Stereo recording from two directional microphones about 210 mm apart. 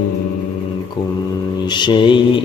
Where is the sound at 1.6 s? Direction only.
20° left (ahead or behind).